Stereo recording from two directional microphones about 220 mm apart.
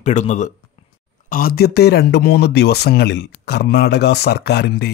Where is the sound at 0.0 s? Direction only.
35° left (ahead or behind).